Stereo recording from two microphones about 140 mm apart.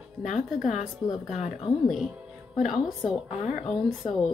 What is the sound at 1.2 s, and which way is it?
Speech, 55° left (ahead or behind).